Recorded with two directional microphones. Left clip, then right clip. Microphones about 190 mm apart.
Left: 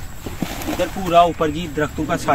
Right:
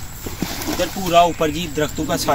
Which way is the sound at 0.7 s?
10° right (ahead or behind).